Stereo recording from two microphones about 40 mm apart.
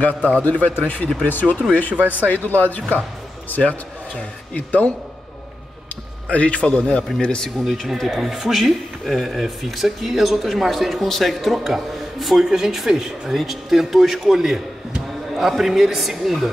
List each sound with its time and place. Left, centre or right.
0.4 s speech: left
2.0 s speech: right
2.2 s speech: left
6.3 s speech: left
6.6 s speech: centre
7.6 s speech: centre
11.5 s a man's voice: centre